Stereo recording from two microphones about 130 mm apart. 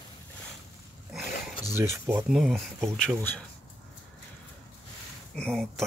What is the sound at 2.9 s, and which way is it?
Speech, 10° left (ahead or behind).